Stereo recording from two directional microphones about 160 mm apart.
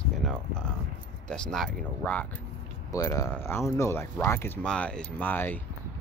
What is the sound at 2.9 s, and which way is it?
Speech, 20° left (ahead or behind).